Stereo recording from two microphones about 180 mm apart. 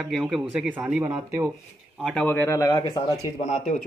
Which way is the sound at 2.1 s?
5° left (ahead or behind).